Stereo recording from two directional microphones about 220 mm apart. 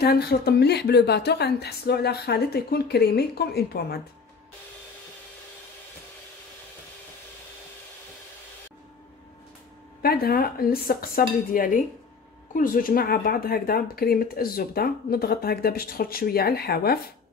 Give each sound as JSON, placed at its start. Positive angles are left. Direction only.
{"t": 0.0, "sound": "speech", "side_deg": 45}
{"t": 10.0, "sound": "speech", "side_deg": 45}